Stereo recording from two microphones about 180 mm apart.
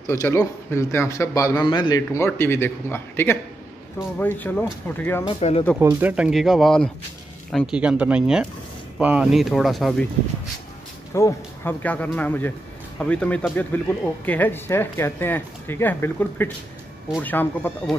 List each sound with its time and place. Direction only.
0.0 s a man's voice: 15° left (ahead or behind)
5.4 s speech: 35° left (ahead or behind)
5.8 s speech: 10° right (ahead or behind)
11.1 s a man's voice: 15° left (ahead or behind)